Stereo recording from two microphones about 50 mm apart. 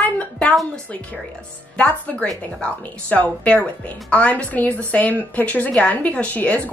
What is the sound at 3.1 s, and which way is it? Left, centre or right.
A woman's voice, left.